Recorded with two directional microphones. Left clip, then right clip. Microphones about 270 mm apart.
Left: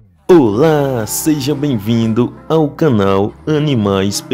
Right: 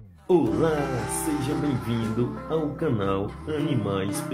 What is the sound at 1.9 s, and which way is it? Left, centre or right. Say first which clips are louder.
Speech: left 12 dB; left.